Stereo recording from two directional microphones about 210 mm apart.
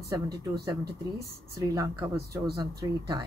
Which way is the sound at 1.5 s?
15° right (ahead or behind).